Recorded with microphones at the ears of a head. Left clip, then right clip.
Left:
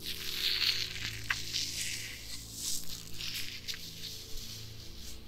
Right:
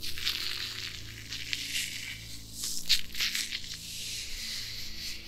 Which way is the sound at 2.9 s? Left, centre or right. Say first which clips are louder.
Right 12 dB; right.